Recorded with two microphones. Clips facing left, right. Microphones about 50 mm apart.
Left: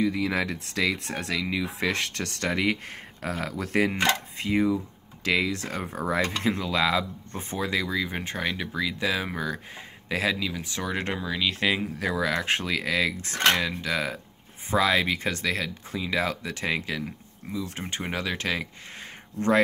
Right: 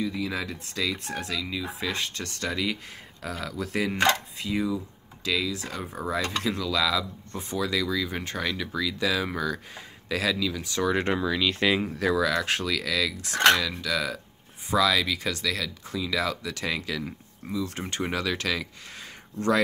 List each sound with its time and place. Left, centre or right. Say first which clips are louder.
0.0 s speech: left 4 dB; left
6.4 s speech: left 1 dB; left; by 10.9 s centre
10.9 s speech: right 4 dB; centre
12.2 s speech: right 1 dB; left